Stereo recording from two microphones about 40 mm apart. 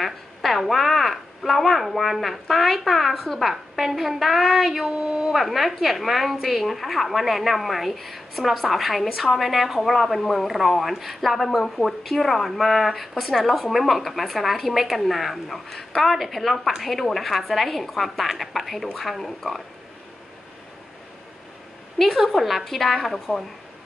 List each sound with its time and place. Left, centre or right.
0.0 s a woman's voice: centre
4.8 s a woman's voice: centre
5.3 s a woman's voice: centre
22.1 s a woman's voice: centre